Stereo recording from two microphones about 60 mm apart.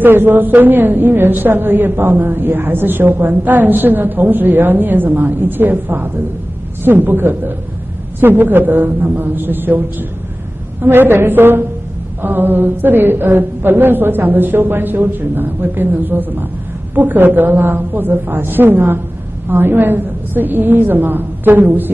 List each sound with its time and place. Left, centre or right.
0.0 s a woman's voice: right